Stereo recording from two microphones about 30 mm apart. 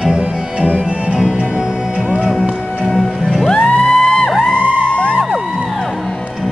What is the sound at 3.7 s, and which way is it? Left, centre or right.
Music, left.